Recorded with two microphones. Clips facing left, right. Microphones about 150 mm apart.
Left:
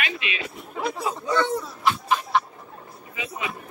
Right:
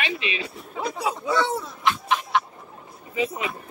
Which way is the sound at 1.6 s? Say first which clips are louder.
Even; centre (ahead or behind).